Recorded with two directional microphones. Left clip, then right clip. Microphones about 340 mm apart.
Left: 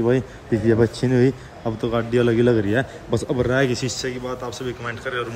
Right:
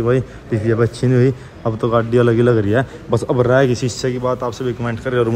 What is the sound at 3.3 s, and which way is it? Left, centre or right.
Speech, centre.